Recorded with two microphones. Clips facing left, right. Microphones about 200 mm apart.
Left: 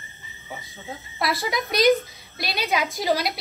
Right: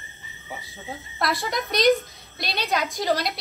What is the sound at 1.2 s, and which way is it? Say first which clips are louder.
A woman's voice: left 1 dB; centre (ahead or behind).